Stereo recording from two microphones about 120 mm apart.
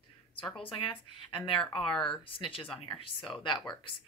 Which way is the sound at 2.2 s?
50° left (ahead or behind).